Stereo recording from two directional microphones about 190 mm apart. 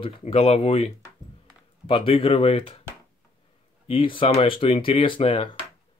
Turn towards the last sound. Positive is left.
turn(degrees=30)  # may be behind; listen again after turning